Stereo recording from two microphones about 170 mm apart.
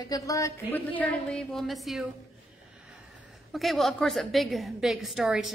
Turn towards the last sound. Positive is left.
turn(degrees=-5)  # may be behind; listen again after turning